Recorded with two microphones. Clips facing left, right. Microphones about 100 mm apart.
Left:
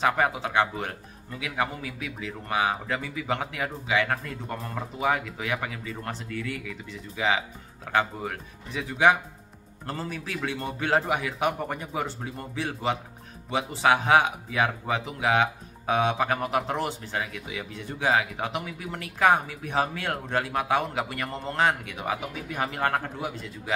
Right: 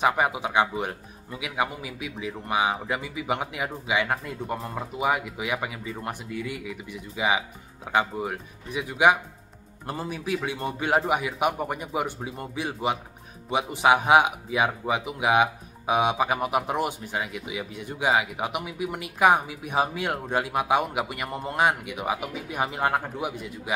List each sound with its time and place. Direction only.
0.0 s speech: 15° right (ahead or behind)